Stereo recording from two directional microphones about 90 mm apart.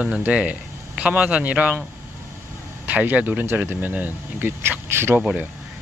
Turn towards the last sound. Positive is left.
turn(degrees=-25)  # may be behind; listen again after turning